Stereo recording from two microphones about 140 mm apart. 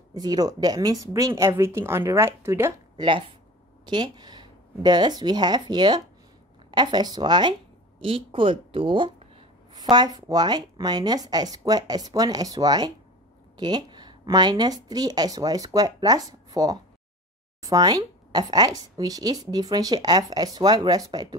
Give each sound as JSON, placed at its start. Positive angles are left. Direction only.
{"t": 0.1, "sound": "speech", "side_deg": -30}
{"t": 3.0, "sound": "a woman's voice", "side_deg": -35}